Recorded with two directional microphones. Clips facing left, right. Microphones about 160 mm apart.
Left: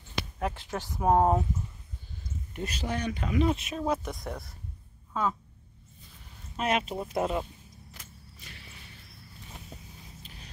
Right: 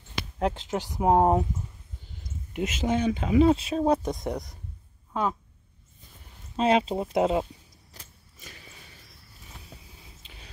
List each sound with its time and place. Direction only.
0.4 s speech: 20° right (ahead or behind)
2.5 s speech: 20° right (ahead or behind)
4.2 s speech: 20° right (ahead or behind)
6.5 s speech: 30° right (ahead or behind)
7.9 s a sound: 35° right (ahead or behind)